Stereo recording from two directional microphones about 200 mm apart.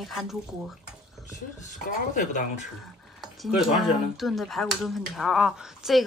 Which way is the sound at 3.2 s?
Centre (ahead or behind).